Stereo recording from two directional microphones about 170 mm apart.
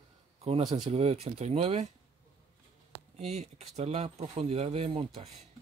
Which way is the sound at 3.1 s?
40° right (ahead or behind).